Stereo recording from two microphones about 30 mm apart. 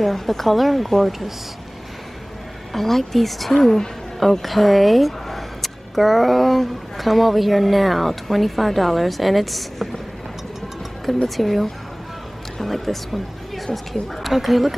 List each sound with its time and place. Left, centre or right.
0.0 s speech: centre
2.7 s a woman's voice: centre
11.2 s speech: centre